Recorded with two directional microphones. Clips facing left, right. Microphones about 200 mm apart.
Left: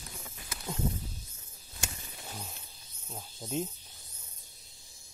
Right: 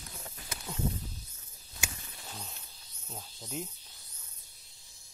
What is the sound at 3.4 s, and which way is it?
Snake, 25° left (ahead or behind).